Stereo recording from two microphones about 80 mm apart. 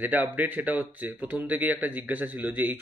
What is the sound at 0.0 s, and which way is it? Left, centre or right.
Speech, right.